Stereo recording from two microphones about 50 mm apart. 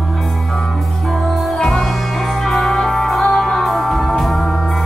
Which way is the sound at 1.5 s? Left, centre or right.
Centre.